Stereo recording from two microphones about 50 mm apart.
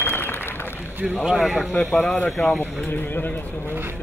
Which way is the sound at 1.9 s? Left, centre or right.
Centre.